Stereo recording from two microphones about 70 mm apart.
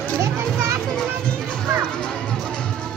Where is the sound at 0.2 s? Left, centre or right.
Right.